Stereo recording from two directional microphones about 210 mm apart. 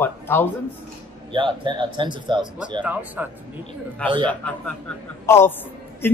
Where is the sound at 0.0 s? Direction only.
10° left (ahead or behind).